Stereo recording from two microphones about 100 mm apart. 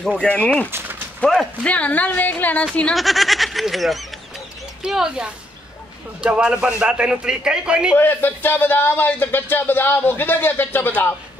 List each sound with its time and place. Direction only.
0.2 s speech: 10° left (ahead or behind)
0.7 s a sound: 20° right (ahead or behind)
1.2 s speech: 10° left (ahead or behind)
2.9 s a man's voice: centre (ahead or behind)
7.9 s speech: 20° left (ahead or behind)